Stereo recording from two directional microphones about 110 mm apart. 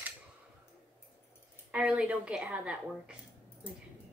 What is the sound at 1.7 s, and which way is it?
A woman's voice, 10° right (ahead or behind).